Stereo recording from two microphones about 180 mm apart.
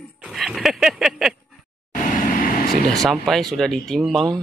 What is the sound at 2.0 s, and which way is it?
Vehicle, 50° left (ahead or behind).